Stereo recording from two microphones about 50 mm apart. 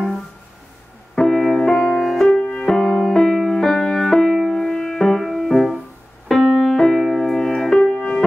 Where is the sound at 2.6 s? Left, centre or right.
Centre.